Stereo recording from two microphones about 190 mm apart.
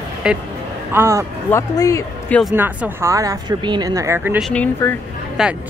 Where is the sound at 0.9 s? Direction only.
15° right (ahead or behind).